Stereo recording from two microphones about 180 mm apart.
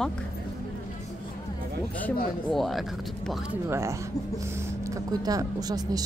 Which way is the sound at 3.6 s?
15° right (ahead or behind).